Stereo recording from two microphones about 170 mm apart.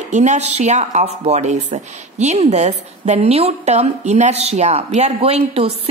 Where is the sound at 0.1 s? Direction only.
45° right (ahead or behind).